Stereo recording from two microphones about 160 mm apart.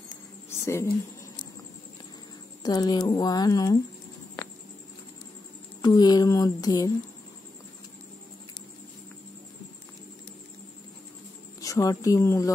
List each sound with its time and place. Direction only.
0.7 s speech: 15° left (ahead or behind)
2.6 s speech: 25° left (ahead or behind)
5.8 s speech: 25° left (ahead or behind)
11.6 s a woman's voice: 20° left (ahead or behind)